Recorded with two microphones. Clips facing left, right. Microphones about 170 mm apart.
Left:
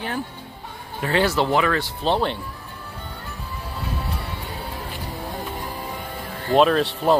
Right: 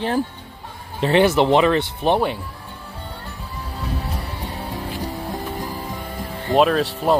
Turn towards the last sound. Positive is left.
turn(degrees=0)  # may be behind; listen again after turning